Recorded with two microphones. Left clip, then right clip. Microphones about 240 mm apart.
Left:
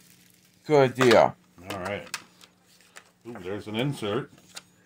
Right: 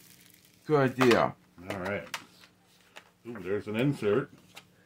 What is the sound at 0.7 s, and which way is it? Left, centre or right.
Speech, left.